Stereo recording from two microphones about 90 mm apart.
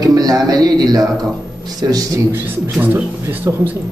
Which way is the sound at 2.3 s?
25° right (ahead or behind).